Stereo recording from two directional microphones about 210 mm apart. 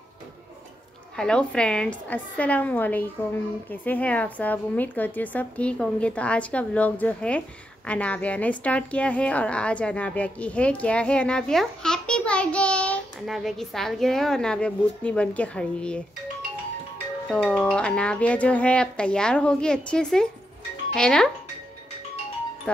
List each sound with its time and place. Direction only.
1.1 s a woman's voice: 5° left (ahead or behind)
17.3 s a woman's voice: 5° left (ahead or behind)